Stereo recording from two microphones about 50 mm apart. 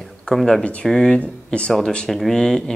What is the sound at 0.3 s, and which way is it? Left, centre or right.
Speech, centre.